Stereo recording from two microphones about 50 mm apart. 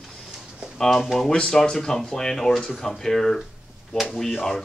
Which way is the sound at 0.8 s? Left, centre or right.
Centre.